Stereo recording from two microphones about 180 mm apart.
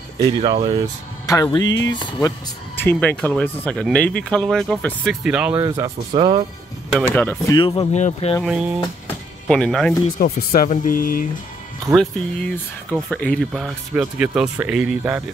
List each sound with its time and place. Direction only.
0.2 s speech: 30° right (ahead or behind)
1.2 s speech: 20° left (ahead or behind)
2.2 s speech: 10° left (ahead or behind); by 5.6 s 5° right (ahead or behind)
5.6 s speech: 20° right (ahead or behind)
7.1 s speech: 10° left (ahead or behind)
7.5 s speech: 25° left (ahead or behind)
7.9 s speech: 35° left (ahead or behind)
8.5 s speech: 5° right (ahead or behind)
10.1 s speech: 50° left (ahead or behind)
12.0 s speech: 5° left (ahead or behind)